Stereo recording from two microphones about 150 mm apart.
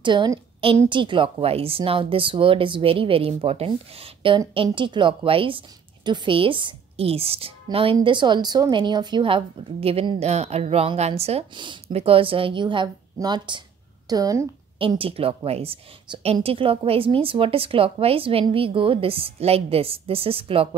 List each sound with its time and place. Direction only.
0.0 s a woman's voice: 30° right (ahead or behind)
14.8 s a woman's voice: 35° right (ahead or behind)